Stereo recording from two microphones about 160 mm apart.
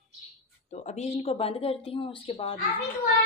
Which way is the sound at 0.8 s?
40° left (ahead or behind).